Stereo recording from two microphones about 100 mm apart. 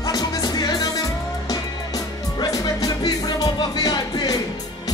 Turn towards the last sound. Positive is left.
turn(degrees=40)  # may be behind; listen again after turning